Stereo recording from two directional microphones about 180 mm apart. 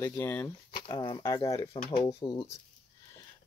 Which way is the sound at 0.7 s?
25° left (ahead or behind).